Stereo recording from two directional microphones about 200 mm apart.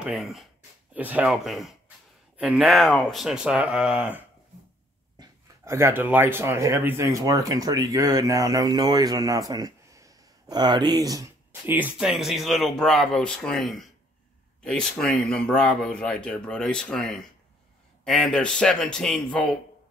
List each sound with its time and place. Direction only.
0.0 s speech: 5° right (ahead or behind)
5.2 s speech: 15° right (ahead or behind); by 19.4 s 5° left (ahead or behind)